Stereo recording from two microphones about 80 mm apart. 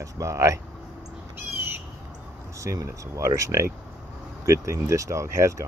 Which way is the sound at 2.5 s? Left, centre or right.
Right.